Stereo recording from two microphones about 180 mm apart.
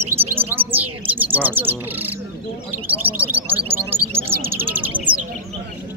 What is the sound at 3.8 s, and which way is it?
Bird, 15° right (ahead or behind).